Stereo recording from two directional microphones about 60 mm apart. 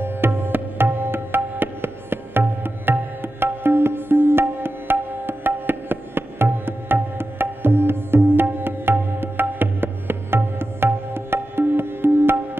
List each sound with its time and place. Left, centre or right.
0.0 s tabla: right